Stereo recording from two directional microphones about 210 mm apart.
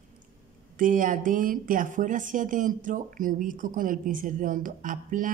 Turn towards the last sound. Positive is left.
turn(degrees=-40)  # may be behind; listen again after turning